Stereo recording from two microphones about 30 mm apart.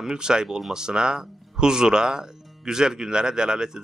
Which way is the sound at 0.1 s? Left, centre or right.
Right.